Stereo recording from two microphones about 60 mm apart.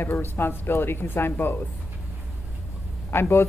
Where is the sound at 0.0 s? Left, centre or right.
Left.